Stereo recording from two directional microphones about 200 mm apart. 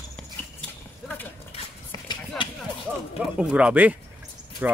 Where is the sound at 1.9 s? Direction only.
25° left (ahead or behind).